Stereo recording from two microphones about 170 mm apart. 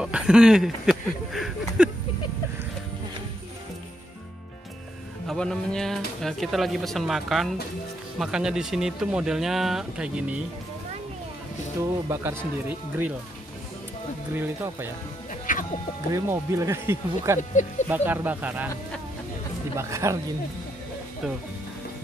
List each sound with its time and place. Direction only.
0.0 s a sound: 5° right (ahead or behind)
5.2 s speech: centre (ahead or behind)
12.1 s speech: 15° right (ahead or behind)
14.3 s speech: 15° right (ahead or behind)
15.5 s music: 55° left (ahead or behind)
16.1 s speech: 20° right (ahead or behind)
17.4 s speech: 45° left (ahead or behind)
17.8 s speech: 10° right (ahead or behind)
19.8 s speech: 15° right (ahead or behind)